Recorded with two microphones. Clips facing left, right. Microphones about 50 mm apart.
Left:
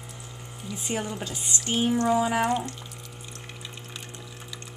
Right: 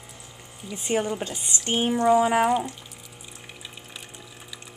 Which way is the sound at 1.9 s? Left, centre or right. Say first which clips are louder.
Right 5 dB; centre.